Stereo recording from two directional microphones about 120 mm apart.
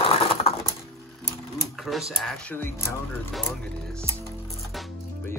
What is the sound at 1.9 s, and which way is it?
Speech, centre (ahead or behind).